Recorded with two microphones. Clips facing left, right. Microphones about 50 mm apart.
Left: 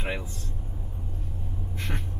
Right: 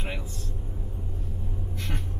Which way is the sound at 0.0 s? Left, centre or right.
Left.